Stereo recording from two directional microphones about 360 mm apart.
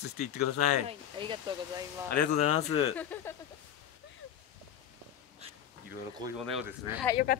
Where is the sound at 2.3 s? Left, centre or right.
Centre.